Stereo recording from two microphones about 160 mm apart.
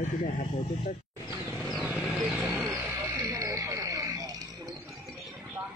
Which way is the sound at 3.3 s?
20° right (ahead or behind).